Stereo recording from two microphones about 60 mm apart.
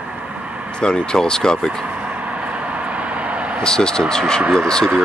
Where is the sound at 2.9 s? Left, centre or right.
Right.